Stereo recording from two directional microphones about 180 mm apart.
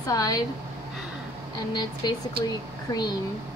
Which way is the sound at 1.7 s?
25° left (ahead or behind).